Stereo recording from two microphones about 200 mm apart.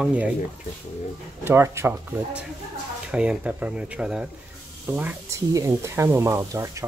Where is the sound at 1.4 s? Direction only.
10° right (ahead or behind).